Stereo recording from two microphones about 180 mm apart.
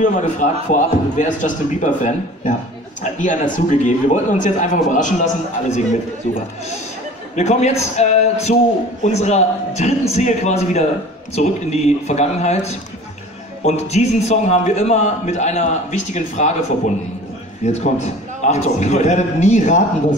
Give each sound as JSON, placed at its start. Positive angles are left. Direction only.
{"t": 0.0, "sound": "a man's voice", "side_deg": 45}
{"t": 7.3, "sound": "a man's voice", "side_deg": 40}